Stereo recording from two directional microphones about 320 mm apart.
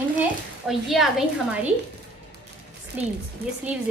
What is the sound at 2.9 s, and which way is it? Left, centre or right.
Speech, centre.